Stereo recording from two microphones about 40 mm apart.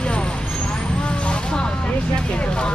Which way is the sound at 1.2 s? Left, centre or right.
Left.